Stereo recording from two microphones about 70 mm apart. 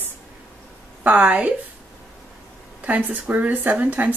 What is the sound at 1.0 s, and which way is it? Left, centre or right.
Speech, centre.